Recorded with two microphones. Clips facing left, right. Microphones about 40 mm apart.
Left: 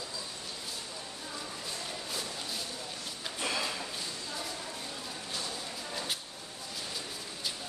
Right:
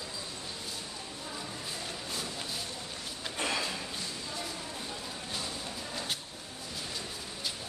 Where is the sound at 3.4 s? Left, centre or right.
Right.